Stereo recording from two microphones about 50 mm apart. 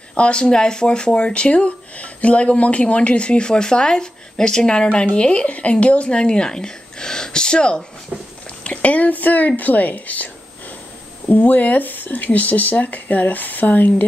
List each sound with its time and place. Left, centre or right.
0.1 s speech: left
8.1 s a sound: centre
8.6 s speech: left